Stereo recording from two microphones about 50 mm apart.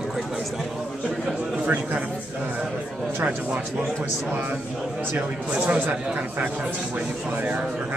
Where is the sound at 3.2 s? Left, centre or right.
Right.